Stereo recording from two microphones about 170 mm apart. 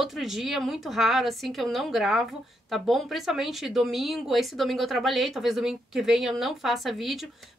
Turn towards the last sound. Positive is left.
turn(degrees=0)  # may be behind; listen again after turning